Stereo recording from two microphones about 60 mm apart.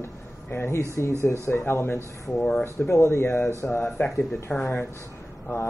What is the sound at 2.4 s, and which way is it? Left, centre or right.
Speech, centre.